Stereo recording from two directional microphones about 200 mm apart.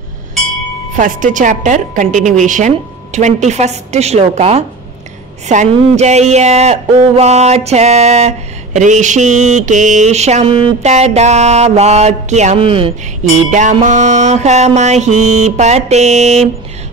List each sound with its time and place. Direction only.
0.9 s speech: 40° right (ahead or behind)
13.5 s speech: 40° right (ahead or behind)